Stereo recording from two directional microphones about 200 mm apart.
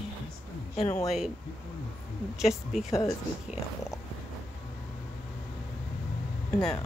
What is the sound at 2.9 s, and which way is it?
Speech, 15° left (ahead or behind).